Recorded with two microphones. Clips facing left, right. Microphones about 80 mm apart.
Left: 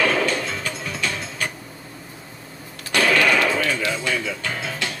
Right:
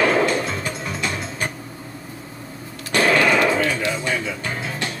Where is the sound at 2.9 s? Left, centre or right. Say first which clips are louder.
Right 1 dB; right.